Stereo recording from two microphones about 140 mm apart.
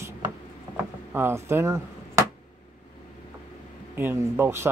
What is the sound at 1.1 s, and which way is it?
Speech, 15° right (ahead or behind).